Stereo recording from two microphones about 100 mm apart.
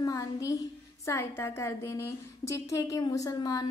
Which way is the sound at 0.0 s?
35° left (ahead or behind).